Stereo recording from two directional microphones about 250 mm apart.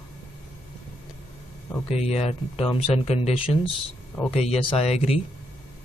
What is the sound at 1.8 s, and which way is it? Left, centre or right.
Speech, left.